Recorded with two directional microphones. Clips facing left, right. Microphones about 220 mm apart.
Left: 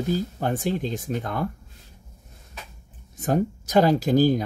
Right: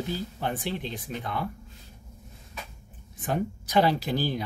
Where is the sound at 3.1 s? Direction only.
45° left (ahead or behind).